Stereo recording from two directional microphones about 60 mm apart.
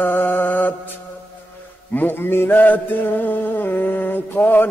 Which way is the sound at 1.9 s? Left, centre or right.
Left.